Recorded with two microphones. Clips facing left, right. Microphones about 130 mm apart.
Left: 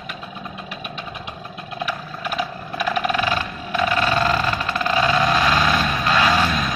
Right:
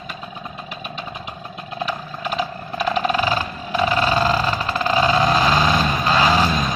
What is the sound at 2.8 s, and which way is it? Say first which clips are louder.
Vehicle: right 2 dB; 35° right (ahead or behind).